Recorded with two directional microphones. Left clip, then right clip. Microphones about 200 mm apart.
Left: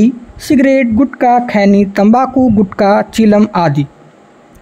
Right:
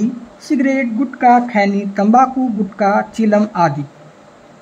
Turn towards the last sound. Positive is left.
turn(degrees=40)  # may be behind; listen again after turning